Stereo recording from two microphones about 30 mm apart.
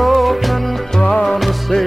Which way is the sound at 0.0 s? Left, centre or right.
Centre.